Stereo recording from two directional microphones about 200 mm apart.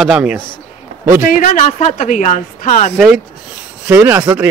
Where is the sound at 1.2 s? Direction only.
40° left (ahead or behind).